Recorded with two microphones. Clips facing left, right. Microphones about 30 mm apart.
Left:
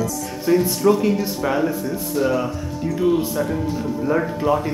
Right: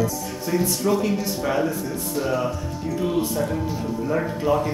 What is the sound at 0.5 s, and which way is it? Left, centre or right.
Speech, centre.